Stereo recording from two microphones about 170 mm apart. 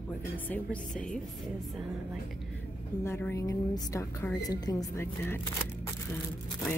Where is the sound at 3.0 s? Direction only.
15° left (ahead or behind).